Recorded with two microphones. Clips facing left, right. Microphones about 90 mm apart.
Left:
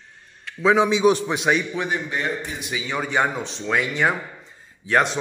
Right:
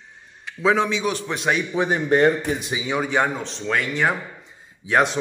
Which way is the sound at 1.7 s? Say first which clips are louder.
Right 7 dB; 35° right (ahead or behind).